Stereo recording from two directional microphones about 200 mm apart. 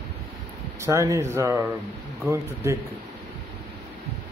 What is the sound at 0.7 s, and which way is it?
Speech, 15° right (ahead or behind).